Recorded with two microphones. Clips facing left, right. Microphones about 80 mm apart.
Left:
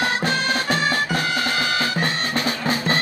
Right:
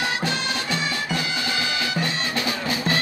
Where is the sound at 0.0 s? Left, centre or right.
Left.